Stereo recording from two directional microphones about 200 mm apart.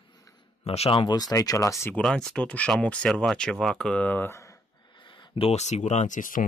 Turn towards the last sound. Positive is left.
turn(degrees=40)  # may be behind; listen again after turning